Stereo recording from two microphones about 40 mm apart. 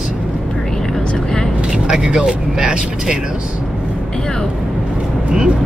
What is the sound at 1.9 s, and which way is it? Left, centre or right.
Speech, right.